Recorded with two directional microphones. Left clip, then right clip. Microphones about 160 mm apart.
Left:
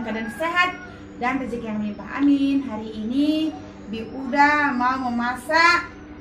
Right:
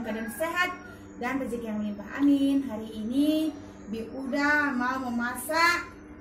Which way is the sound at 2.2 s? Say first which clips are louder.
Left 4 dB; 5° right (ahead or behind).